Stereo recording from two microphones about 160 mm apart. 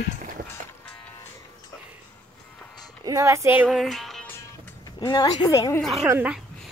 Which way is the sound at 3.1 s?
20° right (ahead or behind).